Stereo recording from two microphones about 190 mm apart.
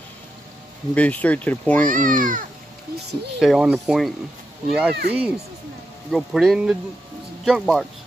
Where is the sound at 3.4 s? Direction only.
Centre (ahead or behind).